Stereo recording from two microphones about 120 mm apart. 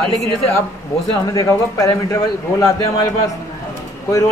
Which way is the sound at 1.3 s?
25° left (ahead or behind).